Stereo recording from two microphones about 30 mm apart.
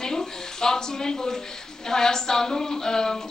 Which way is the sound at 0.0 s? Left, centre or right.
Centre.